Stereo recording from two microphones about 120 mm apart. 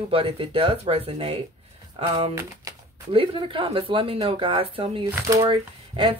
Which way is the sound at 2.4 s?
25° right (ahead or behind).